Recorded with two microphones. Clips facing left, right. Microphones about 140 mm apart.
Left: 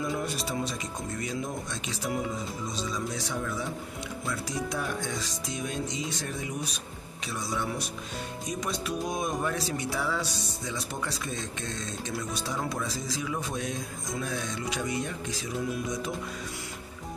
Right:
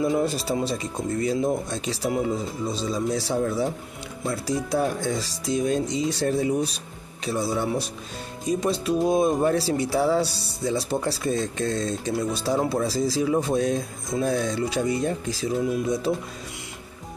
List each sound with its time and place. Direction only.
0.0 s speech: 30° right (ahead or behind)